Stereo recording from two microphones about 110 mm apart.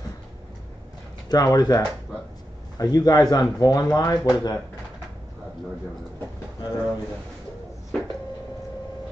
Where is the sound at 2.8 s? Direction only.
35° left (ahead or behind).